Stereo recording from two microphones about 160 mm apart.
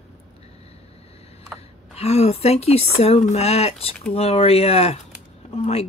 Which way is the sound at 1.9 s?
40° left (ahead or behind).